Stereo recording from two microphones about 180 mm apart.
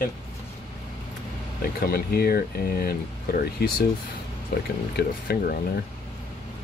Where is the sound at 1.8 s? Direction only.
55° left (ahead or behind).